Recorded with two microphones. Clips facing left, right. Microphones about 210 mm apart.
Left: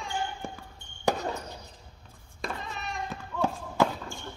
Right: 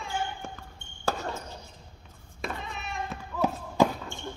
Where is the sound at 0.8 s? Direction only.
Centre (ahead or behind).